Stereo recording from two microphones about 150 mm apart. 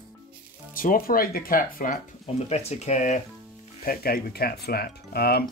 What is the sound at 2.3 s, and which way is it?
Speech, 45° left (ahead or behind).